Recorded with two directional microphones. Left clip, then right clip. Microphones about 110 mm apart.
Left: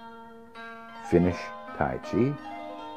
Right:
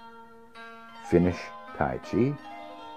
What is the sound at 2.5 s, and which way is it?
Music, 30° left (ahead or behind).